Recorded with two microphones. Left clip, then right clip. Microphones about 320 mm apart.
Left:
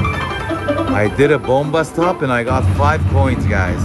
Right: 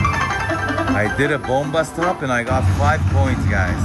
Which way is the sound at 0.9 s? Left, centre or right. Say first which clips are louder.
Left 6 dB; left.